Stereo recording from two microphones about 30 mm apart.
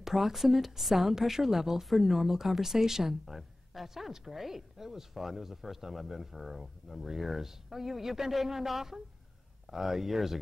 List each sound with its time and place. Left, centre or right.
0.1 s a woman's voice: centre